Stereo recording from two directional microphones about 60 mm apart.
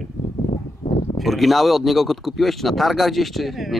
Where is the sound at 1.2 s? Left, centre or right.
Centre.